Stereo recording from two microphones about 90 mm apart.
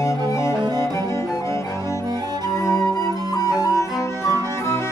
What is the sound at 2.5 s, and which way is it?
Music, 40° left (ahead or behind).